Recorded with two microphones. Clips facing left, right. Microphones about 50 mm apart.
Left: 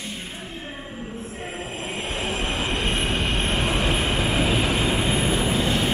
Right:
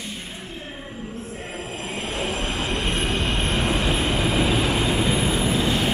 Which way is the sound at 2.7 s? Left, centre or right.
Centre.